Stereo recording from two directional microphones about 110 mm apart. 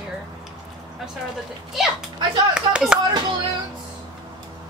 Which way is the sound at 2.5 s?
10° right (ahead or behind).